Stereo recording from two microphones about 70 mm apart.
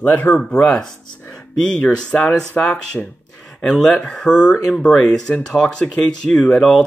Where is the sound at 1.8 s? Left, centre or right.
Centre.